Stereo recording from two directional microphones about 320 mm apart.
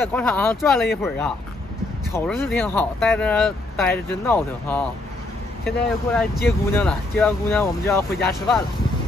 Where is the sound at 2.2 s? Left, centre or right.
Centre.